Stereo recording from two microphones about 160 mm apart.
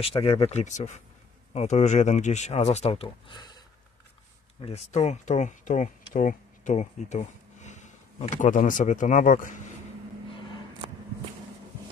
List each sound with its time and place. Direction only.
0.0 s speech: 35° left (ahead or behind)
4.6 s speech: 40° left (ahead or behind)